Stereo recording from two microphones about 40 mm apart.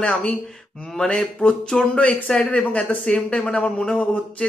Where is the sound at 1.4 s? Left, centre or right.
Left.